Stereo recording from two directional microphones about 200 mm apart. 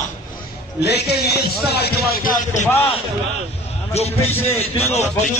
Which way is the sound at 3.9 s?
30° left (ahead or behind).